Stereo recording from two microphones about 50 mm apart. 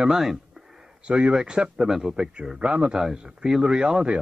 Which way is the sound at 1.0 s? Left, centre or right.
Right.